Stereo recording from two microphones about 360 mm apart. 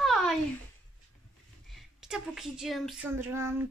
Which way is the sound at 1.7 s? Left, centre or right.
Centre.